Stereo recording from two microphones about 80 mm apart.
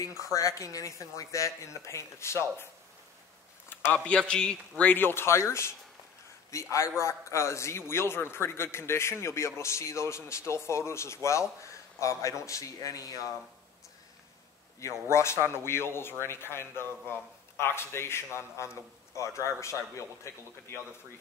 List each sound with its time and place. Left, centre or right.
0.0 s a man's voice: left
3.9 s a man's voice: centre
4.8 s a man's voice: left
14.8 s a man's voice: left